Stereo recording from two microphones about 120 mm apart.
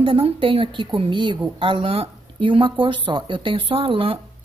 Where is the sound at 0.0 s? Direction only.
50° right (ahead or behind).